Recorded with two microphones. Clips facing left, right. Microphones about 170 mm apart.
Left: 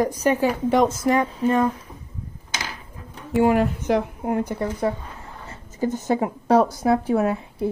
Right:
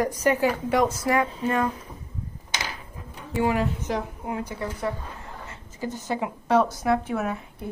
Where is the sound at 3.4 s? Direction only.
55° left (ahead or behind).